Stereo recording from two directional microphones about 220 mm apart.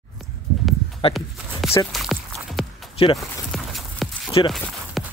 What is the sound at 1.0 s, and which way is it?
Speech, 25° left (ahead or behind).